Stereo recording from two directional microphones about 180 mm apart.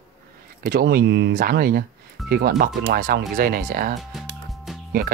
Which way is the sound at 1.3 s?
55° right (ahead or behind).